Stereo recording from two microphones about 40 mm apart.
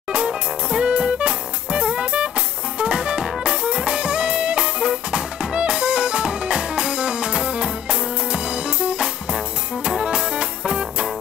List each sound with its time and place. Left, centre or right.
0.1 s music: right